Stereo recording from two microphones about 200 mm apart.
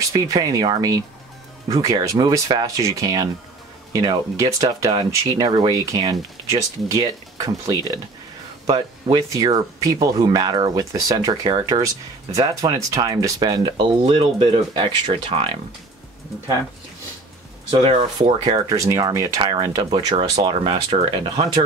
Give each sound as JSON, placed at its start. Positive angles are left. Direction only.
{"t": 0.1, "sound": "speech", "side_deg": -15}
{"t": 17.6, "sound": "speech", "side_deg": -25}